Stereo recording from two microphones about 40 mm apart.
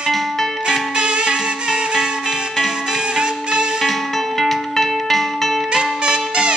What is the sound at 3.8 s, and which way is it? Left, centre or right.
Music, centre.